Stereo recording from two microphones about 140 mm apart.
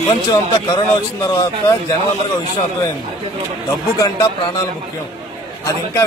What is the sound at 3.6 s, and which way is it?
Speech, 25° left (ahead or behind).